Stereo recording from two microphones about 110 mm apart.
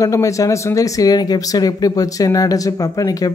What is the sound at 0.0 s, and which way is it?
Speech, 30° left (ahead or behind).